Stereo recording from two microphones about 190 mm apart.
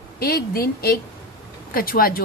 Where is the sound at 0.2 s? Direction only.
50° left (ahead or behind).